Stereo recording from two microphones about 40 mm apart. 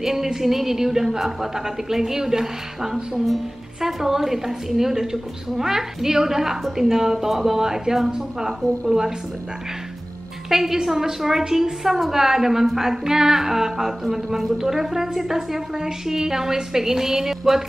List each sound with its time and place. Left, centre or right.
0.0 s a woman's voice: centre
10.5 s a woman's voice: centre